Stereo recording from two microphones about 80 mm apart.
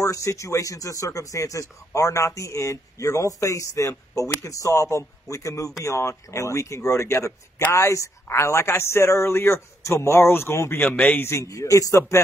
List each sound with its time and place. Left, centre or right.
0.0 s speech: left